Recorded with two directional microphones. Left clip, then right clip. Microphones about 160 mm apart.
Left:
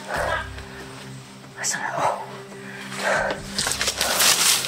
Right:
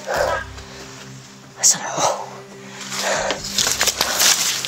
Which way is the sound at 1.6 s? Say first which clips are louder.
Right 5 dB; 30° right (ahead or behind).